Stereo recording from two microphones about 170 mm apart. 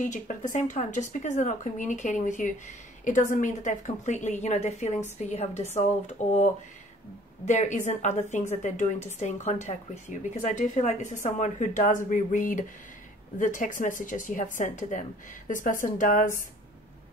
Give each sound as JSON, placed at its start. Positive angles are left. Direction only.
{"t": 0.0, "sound": "speech", "side_deg": 45}